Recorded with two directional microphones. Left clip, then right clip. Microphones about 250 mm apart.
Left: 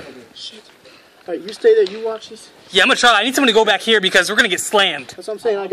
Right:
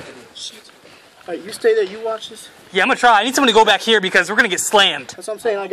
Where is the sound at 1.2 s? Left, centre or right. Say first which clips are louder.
Left 3 dB; right.